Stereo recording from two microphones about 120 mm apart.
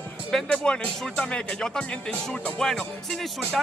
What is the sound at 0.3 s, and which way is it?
Speech, 5° left (ahead or behind).